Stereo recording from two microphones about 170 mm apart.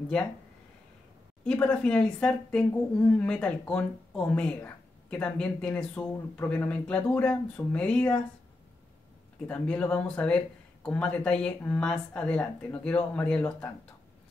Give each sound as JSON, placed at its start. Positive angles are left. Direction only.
{"t": 1.4, "sound": "speech", "side_deg": 5}
{"t": 9.5, "sound": "speech", "side_deg": 10}